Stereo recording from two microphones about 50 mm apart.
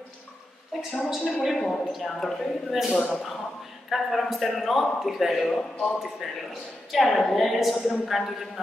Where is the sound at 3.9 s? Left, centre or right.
Centre.